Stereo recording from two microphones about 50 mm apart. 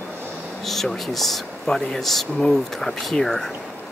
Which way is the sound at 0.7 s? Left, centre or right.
Centre.